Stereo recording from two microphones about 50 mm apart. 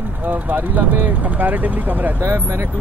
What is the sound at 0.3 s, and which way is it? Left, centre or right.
Speech, right.